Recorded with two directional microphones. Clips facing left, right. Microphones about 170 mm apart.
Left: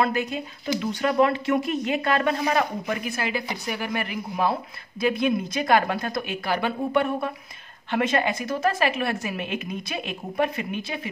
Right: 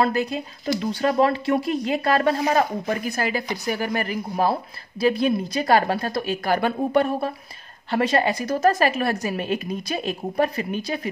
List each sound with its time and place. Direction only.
0.0 s speech: 35° right (ahead or behind)